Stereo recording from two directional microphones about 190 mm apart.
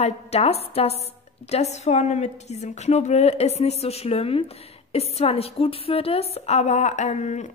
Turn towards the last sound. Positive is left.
turn(degrees=35)  # may be behind; listen again after turning